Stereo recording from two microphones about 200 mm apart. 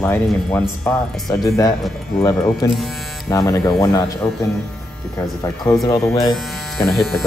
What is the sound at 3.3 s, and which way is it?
Speech, 15° left (ahead or behind).